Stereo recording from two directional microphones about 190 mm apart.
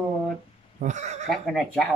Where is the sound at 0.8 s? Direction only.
40° right (ahead or behind).